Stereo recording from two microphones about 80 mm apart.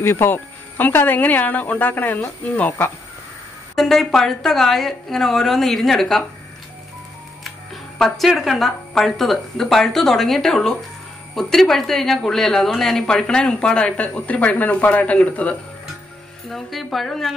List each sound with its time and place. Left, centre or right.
0.0 s speech: left
3.7 s a woman's voice: centre
7.4 s speech: centre
16.4 s a woman's voice: centre